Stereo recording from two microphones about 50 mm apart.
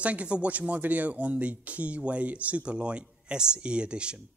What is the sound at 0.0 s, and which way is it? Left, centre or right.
Speech, right.